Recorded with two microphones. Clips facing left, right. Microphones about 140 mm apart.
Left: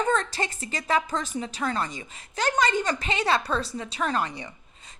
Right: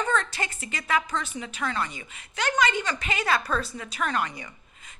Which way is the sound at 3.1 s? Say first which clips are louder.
Left 1 dB; 30° left (ahead or behind).